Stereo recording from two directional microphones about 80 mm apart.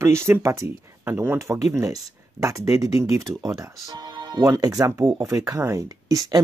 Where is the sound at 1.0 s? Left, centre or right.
Right.